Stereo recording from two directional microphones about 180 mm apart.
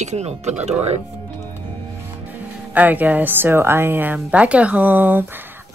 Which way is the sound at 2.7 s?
10° right (ahead or behind).